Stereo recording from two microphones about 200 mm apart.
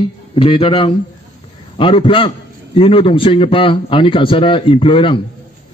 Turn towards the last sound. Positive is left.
turn(degrees=25)  # may be behind; listen again after turning